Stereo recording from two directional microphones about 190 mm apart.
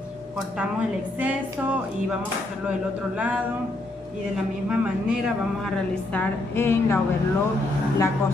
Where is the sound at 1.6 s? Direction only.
5° right (ahead or behind); by 6.9 s 10° left (ahead or behind).